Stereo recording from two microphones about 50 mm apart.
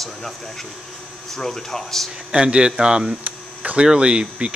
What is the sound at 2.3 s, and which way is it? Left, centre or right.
Speech, centre.